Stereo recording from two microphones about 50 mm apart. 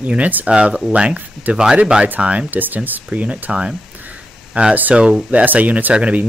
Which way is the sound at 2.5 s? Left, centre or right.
Right.